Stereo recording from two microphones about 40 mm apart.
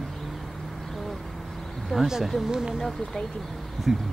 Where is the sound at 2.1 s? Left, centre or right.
Centre.